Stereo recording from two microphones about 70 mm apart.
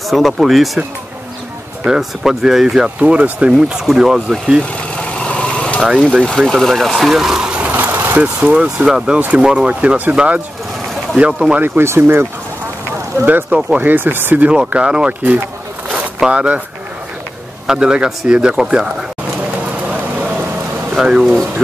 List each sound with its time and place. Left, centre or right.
0.1 s speech: centre
1.9 s speech: centre
4.9 s vehicle: centre
6.2 s speech: centre
11.6 s speech: right
15.9 s vehicle: centre
17.6 s speech: centre
19.9 s a sound: centre
21.2 s speech: centre